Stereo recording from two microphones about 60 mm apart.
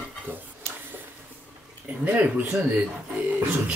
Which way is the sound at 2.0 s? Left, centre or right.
Right.